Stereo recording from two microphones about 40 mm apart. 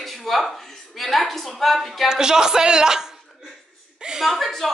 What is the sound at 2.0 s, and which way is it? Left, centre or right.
A man's voice, centre.